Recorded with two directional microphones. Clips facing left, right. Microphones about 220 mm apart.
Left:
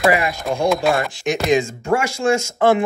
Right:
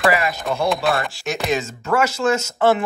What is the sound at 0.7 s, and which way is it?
Speech, centre (ahead or behind).